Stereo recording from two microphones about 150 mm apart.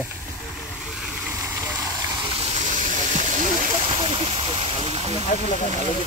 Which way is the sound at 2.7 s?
55° right (ahead or behind).